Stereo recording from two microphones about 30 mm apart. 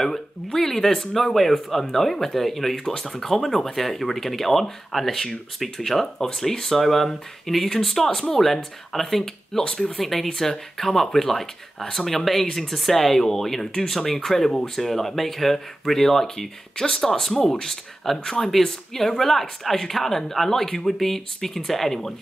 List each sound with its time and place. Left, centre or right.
0.0 s speech: centre
6.1 s speech: centre
9.6 s speech: left
9.9 s speech: centre